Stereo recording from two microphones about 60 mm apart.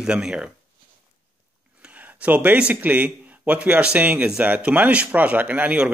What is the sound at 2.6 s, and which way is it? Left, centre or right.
A man's voice, right.